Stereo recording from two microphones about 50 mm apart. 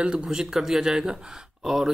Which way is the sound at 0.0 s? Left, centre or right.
Centre.